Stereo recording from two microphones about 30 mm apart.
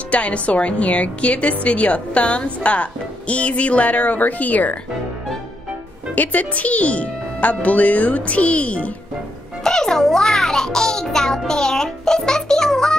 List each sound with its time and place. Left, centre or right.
0.1 s a woman's voice: left
6.1 s speech: left
9.6 s music: centre